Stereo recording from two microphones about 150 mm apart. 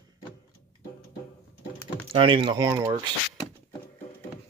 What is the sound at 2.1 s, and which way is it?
Speech, 35° right (ahead or behind).